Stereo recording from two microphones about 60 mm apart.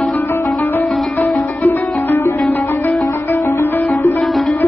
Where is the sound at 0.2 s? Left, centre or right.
Left.